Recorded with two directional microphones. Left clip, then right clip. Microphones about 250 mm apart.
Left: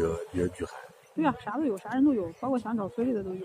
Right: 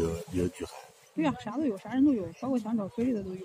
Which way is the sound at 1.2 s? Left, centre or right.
Right.